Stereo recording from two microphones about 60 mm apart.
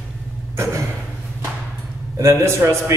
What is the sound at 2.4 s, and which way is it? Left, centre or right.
Speech, right.